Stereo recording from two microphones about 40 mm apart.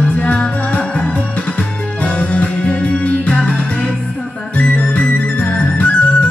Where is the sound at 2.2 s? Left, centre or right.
Left.